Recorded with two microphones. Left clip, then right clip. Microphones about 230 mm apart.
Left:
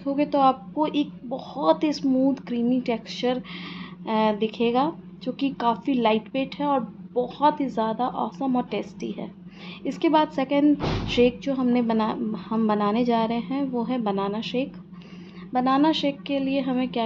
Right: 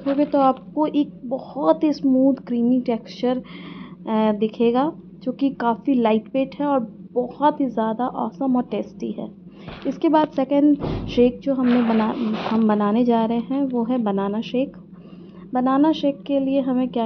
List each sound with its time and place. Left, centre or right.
0.2 s speech: centre